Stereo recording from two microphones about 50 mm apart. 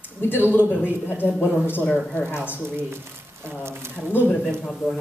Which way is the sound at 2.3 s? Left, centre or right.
Left.